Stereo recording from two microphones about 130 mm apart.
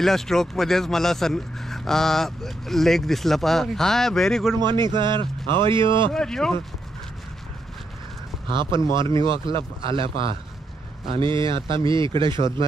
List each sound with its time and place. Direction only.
0.0 s speech: 5° left (ahead or behind)
4.6 s a man's voice: 35° right (ahead or behind)
6.1 s speech: 5° left (ahead or behind)
8.5 s a man's voice: 40° right (ahead or behind)